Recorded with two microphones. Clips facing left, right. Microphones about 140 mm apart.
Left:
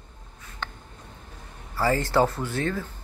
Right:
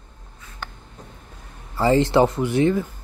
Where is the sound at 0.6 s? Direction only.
5° right (ahead or behind).